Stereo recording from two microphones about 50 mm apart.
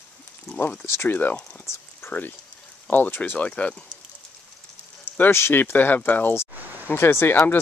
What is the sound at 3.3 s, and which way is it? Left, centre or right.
Speech, left.